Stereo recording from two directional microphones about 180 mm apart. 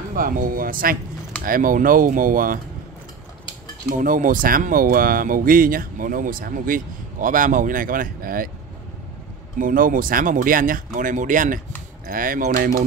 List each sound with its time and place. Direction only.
0.1 s speech: 50° right (ahead or behind)
4.0 s speech: 50° right (ahead or behind)
9.6 s speech: 50° right (ahead or behind)